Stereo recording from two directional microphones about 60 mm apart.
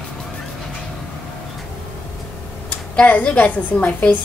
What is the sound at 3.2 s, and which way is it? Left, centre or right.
A woman's voice, left.